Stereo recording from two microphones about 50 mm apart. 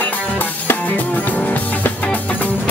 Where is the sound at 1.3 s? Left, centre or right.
Left.